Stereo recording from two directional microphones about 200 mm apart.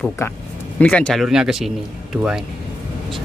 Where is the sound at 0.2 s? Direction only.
15° left (ahead or behind); by 1.7 s 5° right (ahead or behind).